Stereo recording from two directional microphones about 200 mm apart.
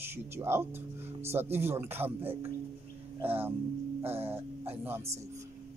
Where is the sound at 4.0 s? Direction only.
30° right (ahead or behind).